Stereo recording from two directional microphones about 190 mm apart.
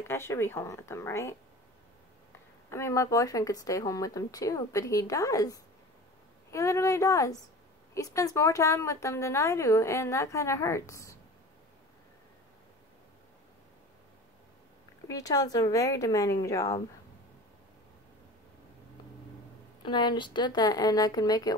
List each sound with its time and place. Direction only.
0.1 s a woman's voice: 15° left (ahead or behind)
2.7 s a woman's voice: 15° left (ahead or behind)
15.0 s a woman's voice: 20° left (ahead or behind)
19.8 s speech: 25° left (ahead or behind)